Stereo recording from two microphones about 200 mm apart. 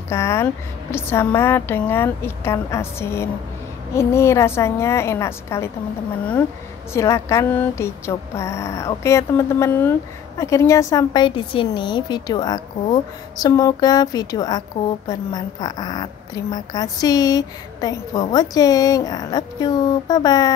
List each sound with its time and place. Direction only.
0.1 s speech: 15° left (ahead or behind)
6.9 s a woman's voice: 15° left (ahead or behind)